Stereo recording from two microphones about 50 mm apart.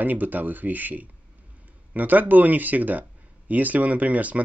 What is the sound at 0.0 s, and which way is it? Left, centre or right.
Speech, right.